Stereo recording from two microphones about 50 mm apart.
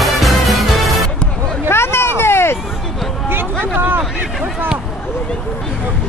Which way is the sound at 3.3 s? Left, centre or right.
Right.